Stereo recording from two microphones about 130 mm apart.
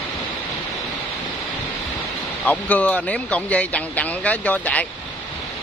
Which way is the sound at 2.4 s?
10° left (ahead or behind).